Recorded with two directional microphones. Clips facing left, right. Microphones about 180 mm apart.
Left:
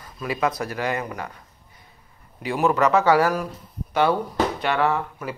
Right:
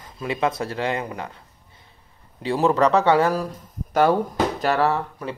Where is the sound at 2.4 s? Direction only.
30° right (ahead or behind).